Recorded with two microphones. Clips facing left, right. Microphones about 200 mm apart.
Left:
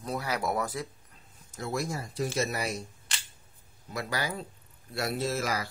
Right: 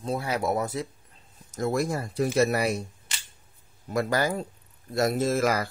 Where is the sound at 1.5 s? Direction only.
50° right (ahead or behind).